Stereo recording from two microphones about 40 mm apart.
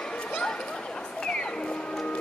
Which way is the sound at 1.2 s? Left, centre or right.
Centre.